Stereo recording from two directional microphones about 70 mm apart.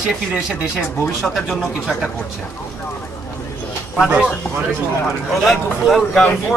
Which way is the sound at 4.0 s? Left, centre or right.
Centre.